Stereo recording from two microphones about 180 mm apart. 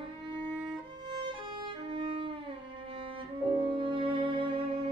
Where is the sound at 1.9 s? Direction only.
30° right (ahead or behind).